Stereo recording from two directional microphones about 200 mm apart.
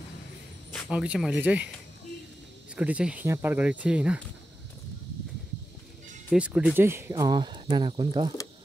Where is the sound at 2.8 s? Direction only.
5° right (ahead or behind).